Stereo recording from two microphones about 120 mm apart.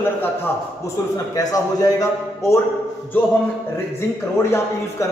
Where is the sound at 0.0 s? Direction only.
20° left (ahead or behind).